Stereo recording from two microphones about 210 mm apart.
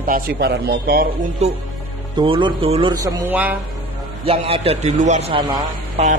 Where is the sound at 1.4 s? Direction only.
30° right (ahead or behind).